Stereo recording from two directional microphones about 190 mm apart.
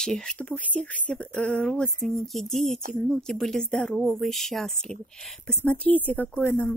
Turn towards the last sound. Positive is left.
turn(degrees=10)  # may be behind; listen again after turning